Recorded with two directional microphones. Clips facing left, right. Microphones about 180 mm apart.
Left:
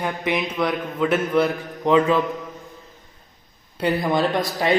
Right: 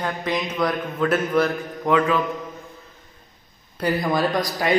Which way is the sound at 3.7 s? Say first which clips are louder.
Left 1 dB; 25° left (ahead or behind).